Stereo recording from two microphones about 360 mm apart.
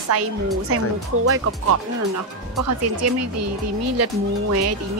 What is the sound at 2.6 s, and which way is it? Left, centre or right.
A woman's voice, right.